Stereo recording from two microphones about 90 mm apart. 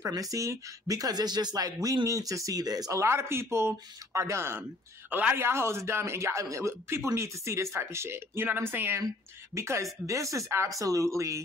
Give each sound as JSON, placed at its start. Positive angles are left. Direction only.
{"t": 0.0, "sound": "speech", "side_deg": -40}